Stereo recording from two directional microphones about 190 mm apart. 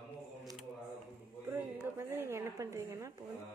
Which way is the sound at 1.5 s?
10° right (ahead or behind).